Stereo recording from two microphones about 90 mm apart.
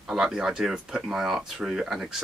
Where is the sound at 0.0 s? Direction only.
5° right (ahead or behind).